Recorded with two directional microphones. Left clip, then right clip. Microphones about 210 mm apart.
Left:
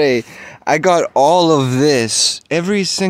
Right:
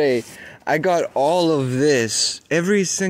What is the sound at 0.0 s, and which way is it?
Speech, 30° left (ahead or behind).